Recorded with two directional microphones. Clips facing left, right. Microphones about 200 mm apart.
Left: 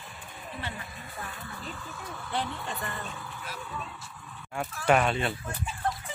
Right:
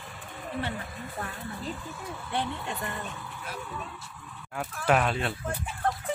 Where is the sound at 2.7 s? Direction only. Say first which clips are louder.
Right 1 dB; 20° right (ahead or behind).